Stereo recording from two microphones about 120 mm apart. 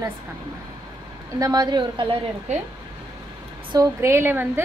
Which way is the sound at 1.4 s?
35° right (ahead or behind).